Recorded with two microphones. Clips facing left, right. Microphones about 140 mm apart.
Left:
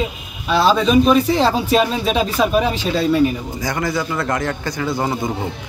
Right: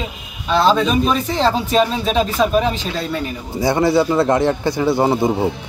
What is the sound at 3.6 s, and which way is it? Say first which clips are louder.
A man's voice: right 8 dB; 25° right (ahead or behind).